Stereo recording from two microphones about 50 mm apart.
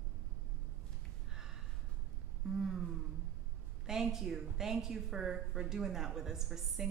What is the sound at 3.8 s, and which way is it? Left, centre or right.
A woman's voice, centre.